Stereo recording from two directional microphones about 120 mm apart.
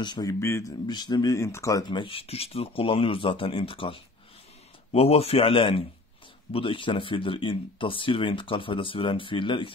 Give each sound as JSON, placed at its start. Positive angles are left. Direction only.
{"t": 0.0, "sound": "speech", "side_deg": 35}
{"t": 0.8, "sound": "speech", "side_deg": 35}
{"t": 1.9, "sound": "speech", "side_deg": 45}